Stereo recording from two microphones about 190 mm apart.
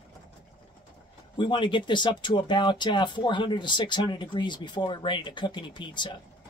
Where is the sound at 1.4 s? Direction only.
25° left (ahead or behind).